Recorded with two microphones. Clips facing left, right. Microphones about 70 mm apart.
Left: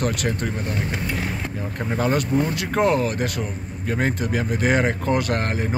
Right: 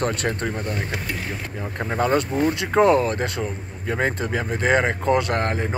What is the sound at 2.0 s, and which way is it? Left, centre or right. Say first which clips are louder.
Speech: right 1 dB; right.